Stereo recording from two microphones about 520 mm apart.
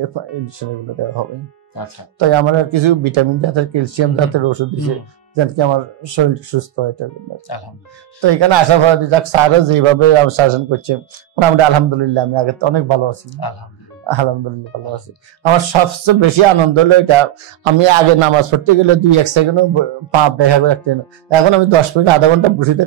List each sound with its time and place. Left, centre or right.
0.2 s speech: right
1.8 s speech: left
2.1 s speech: right
8.2 s a man's voice: right
13.4 s speech: left
14.0 s speech: right
17.7 s a man's voice: right